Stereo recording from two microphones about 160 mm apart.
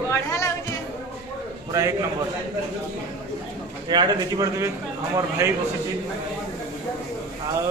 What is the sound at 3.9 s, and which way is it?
A man's voice, 25° right (ahead or behind).